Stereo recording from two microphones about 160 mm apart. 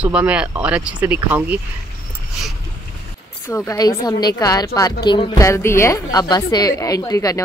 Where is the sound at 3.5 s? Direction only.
20° left (ahead or behind).